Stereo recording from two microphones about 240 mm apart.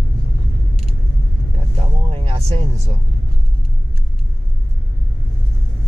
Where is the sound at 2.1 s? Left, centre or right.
Right.